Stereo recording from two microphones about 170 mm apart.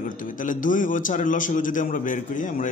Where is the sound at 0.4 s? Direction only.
50° left (ahead or behind).